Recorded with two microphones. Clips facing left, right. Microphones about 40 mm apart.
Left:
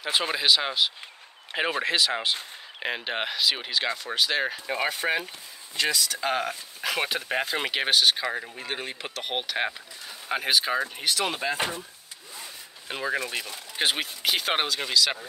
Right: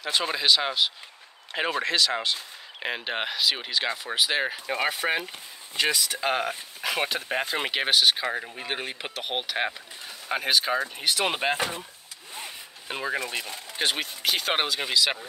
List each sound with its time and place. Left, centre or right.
0.0 s speech: centre
2.8 s speech: centre
11.1 s speech: right
12.9 s speech: centre
13.7 s speech: centre